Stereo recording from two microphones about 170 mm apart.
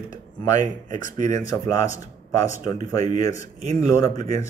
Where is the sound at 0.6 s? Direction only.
50° right (ahead or behind).